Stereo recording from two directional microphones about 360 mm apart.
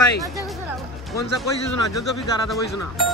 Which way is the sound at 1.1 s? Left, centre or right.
Left.